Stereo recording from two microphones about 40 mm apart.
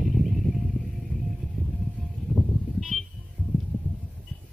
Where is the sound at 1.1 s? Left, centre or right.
Left.